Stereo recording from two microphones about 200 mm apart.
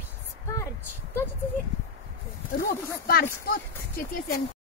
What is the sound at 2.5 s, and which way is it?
Speech, 50° left (ahead or behind).